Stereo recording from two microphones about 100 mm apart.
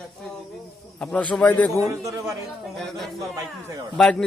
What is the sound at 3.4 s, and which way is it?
Speech, 40° right (ahead or behind).